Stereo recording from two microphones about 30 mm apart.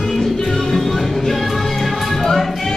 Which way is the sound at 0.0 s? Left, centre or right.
Centre.